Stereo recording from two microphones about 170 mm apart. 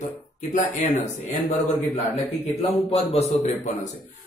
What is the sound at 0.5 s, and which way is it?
A man's voice, 45° left (ahead or behind).